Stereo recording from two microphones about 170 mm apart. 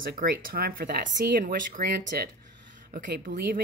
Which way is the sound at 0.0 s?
55° right (ahead or behind).